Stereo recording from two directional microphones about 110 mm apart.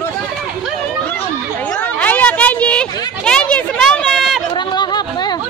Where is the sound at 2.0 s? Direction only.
15° left (ahead or behind).